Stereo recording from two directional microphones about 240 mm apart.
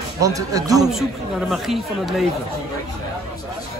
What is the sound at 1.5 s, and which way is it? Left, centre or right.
Speech, centre.